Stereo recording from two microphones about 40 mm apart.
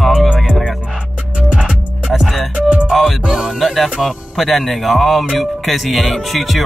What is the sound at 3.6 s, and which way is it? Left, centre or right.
Music, centre.